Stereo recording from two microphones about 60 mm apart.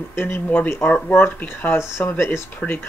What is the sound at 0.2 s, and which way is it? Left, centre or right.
Speech, left.